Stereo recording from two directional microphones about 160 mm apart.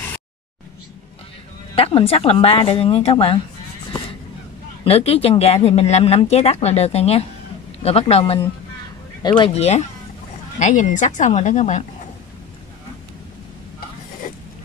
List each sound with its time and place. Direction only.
1.8 s speech: 35° left (ahead or behind)
4.8 s a woman's voice: 40° left (ahead or behind)